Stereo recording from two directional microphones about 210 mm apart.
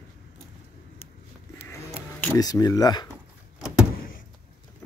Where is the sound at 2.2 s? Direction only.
15° left (ahead or behind).